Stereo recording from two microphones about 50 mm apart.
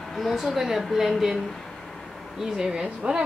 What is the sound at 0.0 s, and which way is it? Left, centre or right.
Speech, centre.